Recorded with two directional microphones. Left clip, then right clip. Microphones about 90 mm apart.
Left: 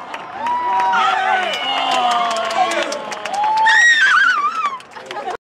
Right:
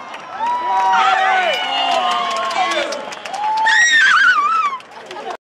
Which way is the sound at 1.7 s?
35° left (ahead or behind).